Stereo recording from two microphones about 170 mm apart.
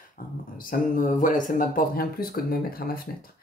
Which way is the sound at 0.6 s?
55° left (ahead or behind).